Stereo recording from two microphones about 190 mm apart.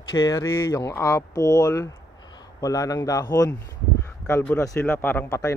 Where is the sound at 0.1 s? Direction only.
20° left (ahead or behind).